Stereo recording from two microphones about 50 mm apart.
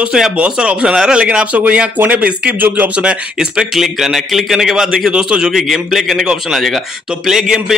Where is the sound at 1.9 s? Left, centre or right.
Right.